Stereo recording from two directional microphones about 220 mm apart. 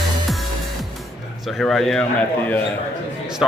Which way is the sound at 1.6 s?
5° left (ahead or behind).